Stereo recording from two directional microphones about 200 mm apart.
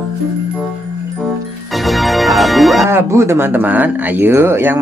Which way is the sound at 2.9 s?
10° right (ahead or behind).